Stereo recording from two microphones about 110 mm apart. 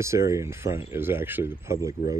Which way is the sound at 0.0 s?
25° right (ahead or behind).